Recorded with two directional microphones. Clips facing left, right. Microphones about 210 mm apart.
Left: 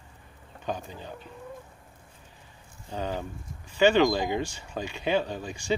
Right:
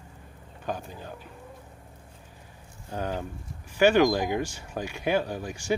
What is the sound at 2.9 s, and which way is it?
Speech, 10° right (ahead or behind).